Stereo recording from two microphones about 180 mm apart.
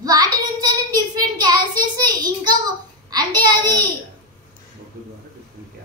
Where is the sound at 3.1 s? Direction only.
20° right (ahead or behind).